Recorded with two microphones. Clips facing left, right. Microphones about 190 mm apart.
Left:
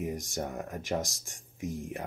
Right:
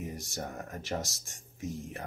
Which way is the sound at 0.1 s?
15° left (ahead or behind).